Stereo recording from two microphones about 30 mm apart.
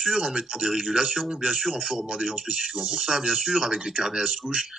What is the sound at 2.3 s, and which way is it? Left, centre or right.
Speech, right.